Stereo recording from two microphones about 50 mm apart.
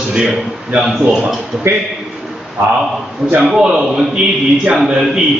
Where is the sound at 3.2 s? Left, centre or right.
Centre.